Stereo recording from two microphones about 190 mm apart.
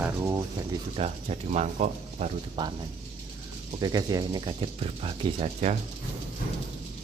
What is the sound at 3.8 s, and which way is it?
Speech, 20° right (ahead or behind).